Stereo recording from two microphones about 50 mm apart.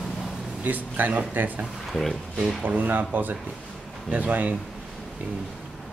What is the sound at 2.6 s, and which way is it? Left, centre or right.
Speech, right.